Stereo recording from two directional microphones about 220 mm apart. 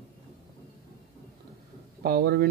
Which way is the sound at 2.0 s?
45° right (ahead or behind).